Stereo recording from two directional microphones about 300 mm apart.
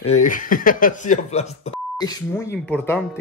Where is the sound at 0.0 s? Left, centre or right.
Left.